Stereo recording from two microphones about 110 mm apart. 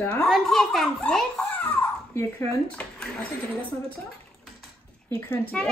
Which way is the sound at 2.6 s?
5° left (ahead or behind).